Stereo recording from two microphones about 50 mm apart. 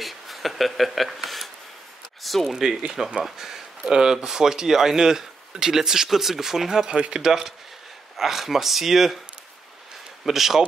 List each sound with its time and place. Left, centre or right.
0.0 s speech: centre
2.5 s speech: centre
6.9 s speech: centre
10.2 s speech: centre